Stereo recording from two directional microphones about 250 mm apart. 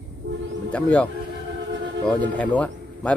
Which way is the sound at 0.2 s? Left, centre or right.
Right.